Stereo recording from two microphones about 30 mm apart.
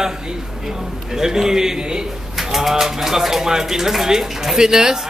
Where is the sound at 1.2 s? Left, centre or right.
Centre.